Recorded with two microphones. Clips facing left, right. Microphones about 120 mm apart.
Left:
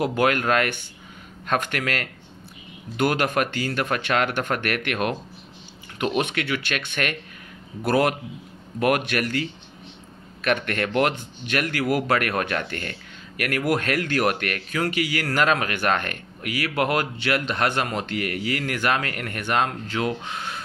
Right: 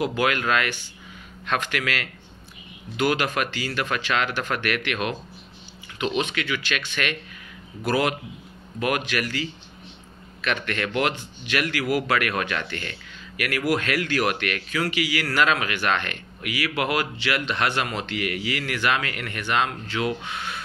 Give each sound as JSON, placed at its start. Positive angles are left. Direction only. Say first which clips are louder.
{"t": 0.0, "sound": "speech", "louder": "left 2 dB", "side_deg": 50}